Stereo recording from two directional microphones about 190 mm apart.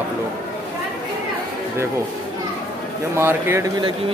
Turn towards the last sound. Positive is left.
turn(degrees=-15)  # may be behind; listen again after turning